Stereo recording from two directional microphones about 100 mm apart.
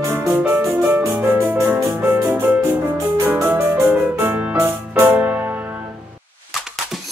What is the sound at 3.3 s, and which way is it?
Piano, 20° right (ahead or behind).